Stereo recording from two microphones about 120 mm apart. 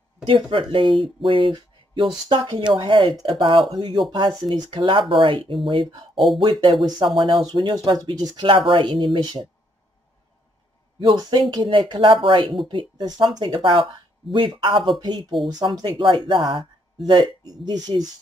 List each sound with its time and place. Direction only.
0.2 s speech: 45° right (ahead or behind)
6.1 s speech: centre (ahead or behind)
6.6 s speech: 40° right (ahead or behind)
11.0 s speech: 35° right (ahead or behind)